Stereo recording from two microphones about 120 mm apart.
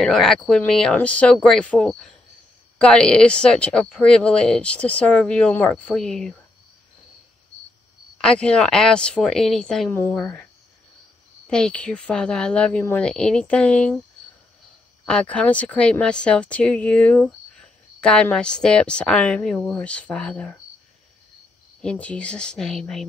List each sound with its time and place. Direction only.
0.0 s speech: 5° left (ahead or behind)
8.2 s speech: 10° left (ahead or behind)
9.8 s speech: 20° left (ahead or behind)
11.4 s speech: 5° left (ahead or behind)
15.0 s speech: 10° left (ahead or behind)
21.8 s speech: 10° left (ahead or behind)